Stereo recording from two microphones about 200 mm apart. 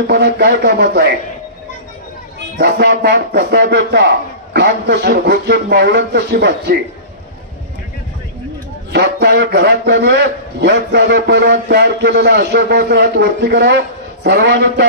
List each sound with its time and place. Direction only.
0.0 s speech: 50° right (ahead or behind)
2.5 s a man's voice: 55° right (ahead or behind)
8.9 s a man's voice: 55° right (ahead or behind)